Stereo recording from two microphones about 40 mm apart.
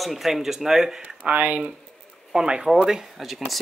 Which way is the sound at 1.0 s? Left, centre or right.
Right.